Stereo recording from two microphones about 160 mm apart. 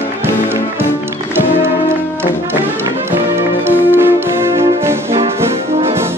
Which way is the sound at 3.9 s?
15° right (ahead or behind).